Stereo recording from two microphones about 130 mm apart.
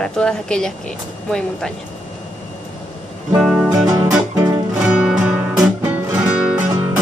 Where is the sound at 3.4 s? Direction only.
5° right (ahead or behind).